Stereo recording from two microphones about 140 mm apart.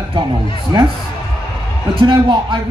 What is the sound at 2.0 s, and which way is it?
Speech, 35° right (ahead or behind).